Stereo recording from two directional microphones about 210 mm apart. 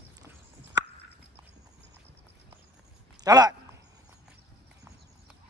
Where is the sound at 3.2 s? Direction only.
20° right (ahead or behind).